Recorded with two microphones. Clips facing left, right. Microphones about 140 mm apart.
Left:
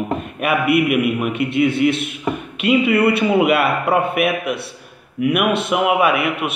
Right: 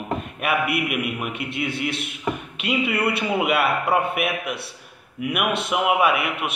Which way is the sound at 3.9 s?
60° left (ahead or behind).